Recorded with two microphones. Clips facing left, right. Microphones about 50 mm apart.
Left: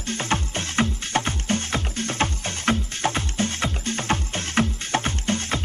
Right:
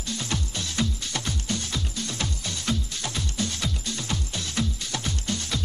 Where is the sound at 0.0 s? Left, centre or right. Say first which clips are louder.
Left 6 dB; left.